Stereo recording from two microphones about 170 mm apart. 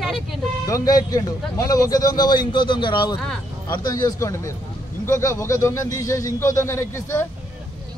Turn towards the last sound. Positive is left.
turn(degrees=15)  # may be behind; listen again after turning